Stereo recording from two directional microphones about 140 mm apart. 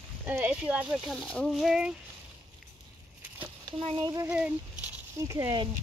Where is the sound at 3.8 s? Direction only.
40° right (ahead or behind).